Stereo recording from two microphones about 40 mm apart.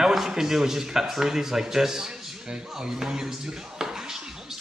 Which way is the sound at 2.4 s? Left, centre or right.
Centre.